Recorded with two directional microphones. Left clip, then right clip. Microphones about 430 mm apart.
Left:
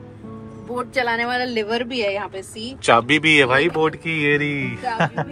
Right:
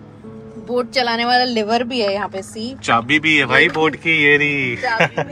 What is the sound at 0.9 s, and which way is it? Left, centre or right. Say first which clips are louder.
Speech: right 4 dB; centre.